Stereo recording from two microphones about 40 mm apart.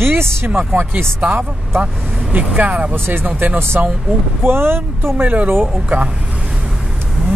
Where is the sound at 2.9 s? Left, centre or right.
Right.